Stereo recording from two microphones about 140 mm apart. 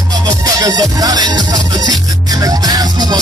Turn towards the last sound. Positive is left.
turn(degrees=-30)  # may be behind; listen again after turning